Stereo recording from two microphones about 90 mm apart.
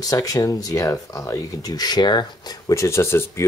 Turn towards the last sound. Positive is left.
turn(degrees=30)  # may be behind; listen again after turning